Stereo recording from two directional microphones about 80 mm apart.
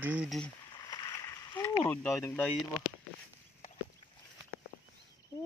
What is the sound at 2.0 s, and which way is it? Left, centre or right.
Speech, left.